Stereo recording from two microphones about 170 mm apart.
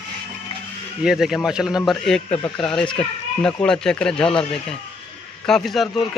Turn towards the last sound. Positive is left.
turn(degrees=0)  # may be behind; listen again after turning